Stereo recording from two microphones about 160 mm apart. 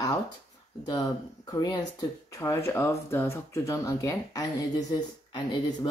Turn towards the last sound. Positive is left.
turn(degrees=25)  # may be behind; listen again after turning